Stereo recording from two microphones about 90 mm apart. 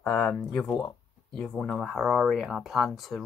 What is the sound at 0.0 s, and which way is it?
Speech, 10° left (ahead or behind).